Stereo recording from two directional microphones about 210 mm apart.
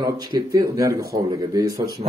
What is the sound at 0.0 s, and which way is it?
Speech, 20° right (ahead or behind).